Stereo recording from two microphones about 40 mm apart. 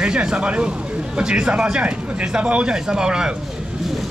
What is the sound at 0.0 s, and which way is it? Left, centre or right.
Speech, right.